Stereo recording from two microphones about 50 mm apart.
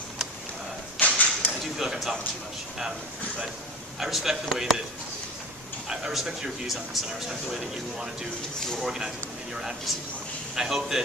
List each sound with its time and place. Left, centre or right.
0.9 s a sound: left
1.6 s speech: centre
4.0 s speech: centre
5.9 s speech: centre
10.5 s speech: centre